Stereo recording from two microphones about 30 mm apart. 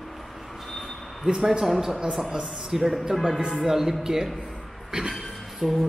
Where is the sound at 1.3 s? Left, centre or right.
Centre.